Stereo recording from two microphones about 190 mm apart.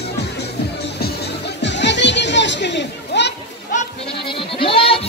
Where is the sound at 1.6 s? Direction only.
70° left (ahead or behind).